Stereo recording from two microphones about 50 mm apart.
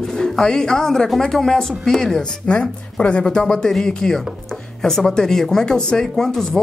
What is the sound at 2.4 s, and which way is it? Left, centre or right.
Speech, left.